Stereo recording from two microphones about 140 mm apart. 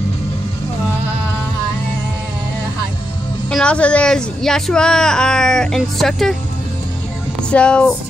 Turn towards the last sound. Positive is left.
turn(degrees=5)  # may be behind; listen again after turning